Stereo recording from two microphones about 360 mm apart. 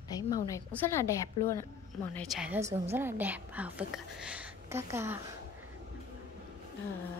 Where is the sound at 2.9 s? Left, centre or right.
Centre.